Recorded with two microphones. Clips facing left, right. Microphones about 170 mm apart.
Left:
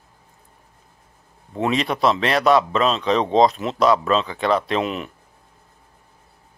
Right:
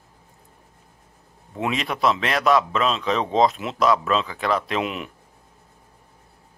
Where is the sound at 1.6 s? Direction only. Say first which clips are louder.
Left 3 dB; 35° left (ahead or behind).